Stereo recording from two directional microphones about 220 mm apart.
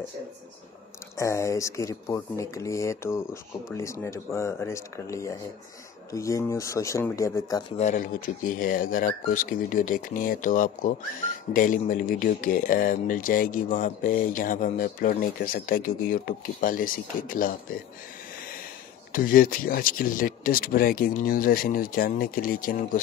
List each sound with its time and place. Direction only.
1.1 s speech: 15° left (ahead or behind)
7.7 s speech: 35° left (ahead or behind)
19.1 s speech: 40° left (ahead or behind)